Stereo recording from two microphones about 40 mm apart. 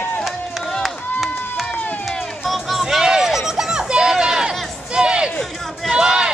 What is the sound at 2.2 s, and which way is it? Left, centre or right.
Run, centre.